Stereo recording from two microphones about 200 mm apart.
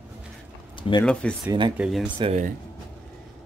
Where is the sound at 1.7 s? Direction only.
5° right (ahead or behind).